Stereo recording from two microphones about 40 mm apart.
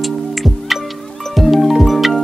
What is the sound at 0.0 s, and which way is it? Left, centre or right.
Music, centre.